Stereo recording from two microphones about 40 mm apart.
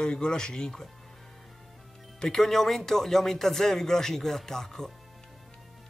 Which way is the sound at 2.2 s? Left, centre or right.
Centre.